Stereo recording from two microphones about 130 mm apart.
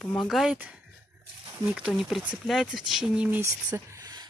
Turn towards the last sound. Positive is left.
turn(degrees=-25)  # may be behind; listen again after turning